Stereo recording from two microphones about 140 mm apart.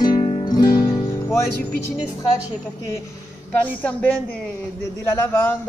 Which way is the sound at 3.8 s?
10° left (ahead or behind).